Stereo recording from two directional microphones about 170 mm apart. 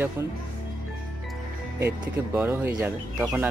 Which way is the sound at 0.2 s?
15° right (ahead or behind).